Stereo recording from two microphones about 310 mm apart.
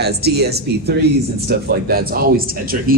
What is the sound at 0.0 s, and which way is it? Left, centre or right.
Speech, right.